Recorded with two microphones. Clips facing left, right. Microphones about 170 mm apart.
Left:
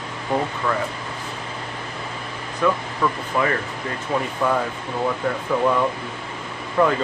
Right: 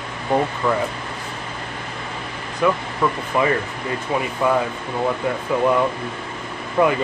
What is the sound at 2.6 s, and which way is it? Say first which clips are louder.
Speech: right 2 dB; 15° right (ahead or behind).